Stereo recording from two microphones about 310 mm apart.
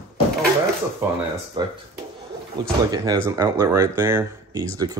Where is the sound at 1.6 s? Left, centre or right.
Centre.